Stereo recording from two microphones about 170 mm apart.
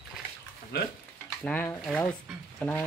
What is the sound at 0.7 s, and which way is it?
Stir, 70° left (ahead or behind).